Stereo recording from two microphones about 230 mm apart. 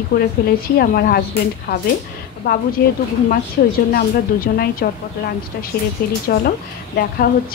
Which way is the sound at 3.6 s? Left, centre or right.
Left.